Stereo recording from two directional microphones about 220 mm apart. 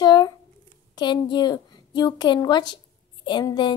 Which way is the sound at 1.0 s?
20° left (ahead or behind).